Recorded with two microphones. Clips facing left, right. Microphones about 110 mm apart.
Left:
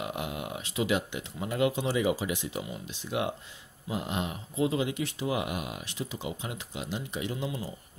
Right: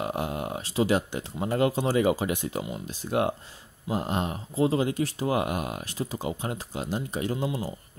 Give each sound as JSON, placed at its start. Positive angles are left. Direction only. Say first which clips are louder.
{"t": 0.0, "sound": "speech", "louder": "right 5 dB", "side_deg": -40}